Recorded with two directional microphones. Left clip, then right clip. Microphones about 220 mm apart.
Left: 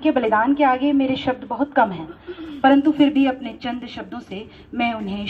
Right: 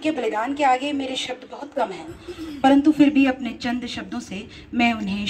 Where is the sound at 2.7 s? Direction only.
50° right (ahead or behind).